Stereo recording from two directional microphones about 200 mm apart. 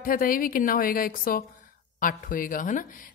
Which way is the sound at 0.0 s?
45° left (ahead or behind).